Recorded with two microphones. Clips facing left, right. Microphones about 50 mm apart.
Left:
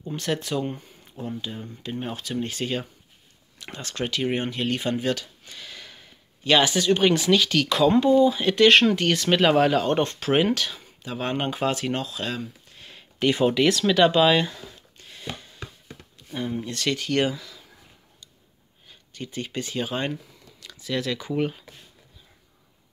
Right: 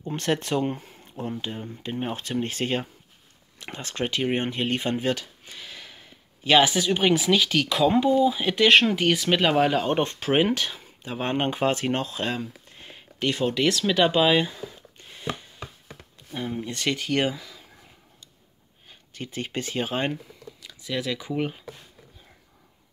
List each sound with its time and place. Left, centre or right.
0.1 s speech: right
13.2 s speech: centre
13.6 s a sound: centre
16.3 s speech: centre
16.7 s speech: right
18.9 s speech: right
20.6 s speech: centre